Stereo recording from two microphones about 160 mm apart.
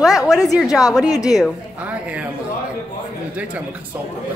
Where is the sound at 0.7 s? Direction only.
20° left (ahead or behind).